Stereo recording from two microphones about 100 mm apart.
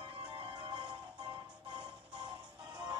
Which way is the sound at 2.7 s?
45° right (ahead or behind).